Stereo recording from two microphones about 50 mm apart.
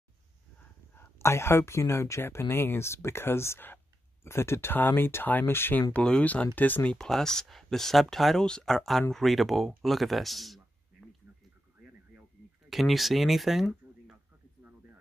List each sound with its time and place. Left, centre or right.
0.9 s speech: left
4.7 s speech: left
6.2 s speech: left
7.0 s speech: centre
12.6 s speech: centre
14.6 s a sound: right